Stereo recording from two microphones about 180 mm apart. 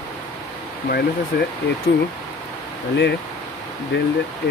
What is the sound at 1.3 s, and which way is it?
Speech, 60° left (ahead or behind).